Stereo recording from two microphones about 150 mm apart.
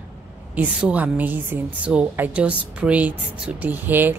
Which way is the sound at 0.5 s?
10° right (ahead or behind).